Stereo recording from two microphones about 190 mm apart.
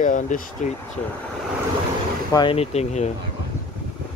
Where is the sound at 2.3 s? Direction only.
25° left (ahead or behind).